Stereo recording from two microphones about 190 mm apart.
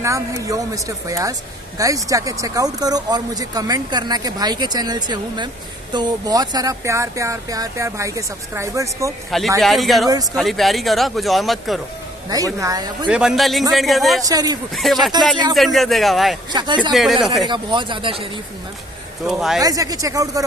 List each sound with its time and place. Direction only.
0.0 s speech: 15° right (ahead or behind)
9.6 s speech: centre (ahead or behind)
12.3 s speech: 20° right (ahead or behind)
13.1 s speech: 5° right (ahead or behind)
14.2 s speech: 20° right (ahead or behind)
14.8 s speech: centre (ahead or behind)
16.5 s speech: 25° right (ahead or behind)
16.9 s speech: centre (ahead or behind)
17.5 s speech: 25° right (ahead or behind)
19.2 s speech: centre (ahead or behind)
19.6 s speech: 20° right (ahead or behind)